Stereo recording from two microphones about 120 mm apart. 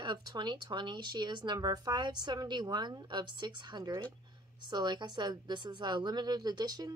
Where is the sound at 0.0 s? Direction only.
40° right (ahead or behind).